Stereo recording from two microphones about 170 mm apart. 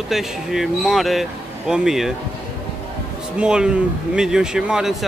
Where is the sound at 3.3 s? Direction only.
5° right (ahead or behind).